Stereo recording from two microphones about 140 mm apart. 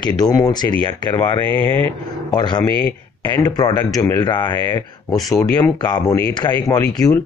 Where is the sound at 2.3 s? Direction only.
30° left (ahead or behind).